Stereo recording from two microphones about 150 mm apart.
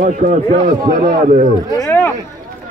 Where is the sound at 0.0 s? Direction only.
60° right (ahead or behind).